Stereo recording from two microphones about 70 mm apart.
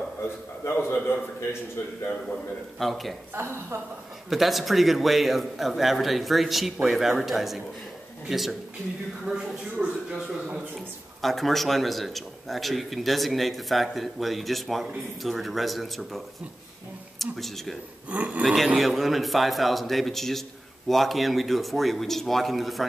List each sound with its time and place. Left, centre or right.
0.7 s a man's voice: left
2.8 s a man's voice: centre
3.3 s a woman's voice: right
4.3 s a man's voice: centre
9.8 s a woman's voice: right
10.1 s a man's voice: centre
11.1 s a man's voice: centre
17.2 s a man's voice: centre
18.1 s speech: right
18.4 s a man's voice: centre